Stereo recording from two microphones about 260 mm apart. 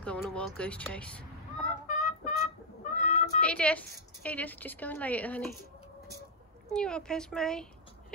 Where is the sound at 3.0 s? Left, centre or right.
Left.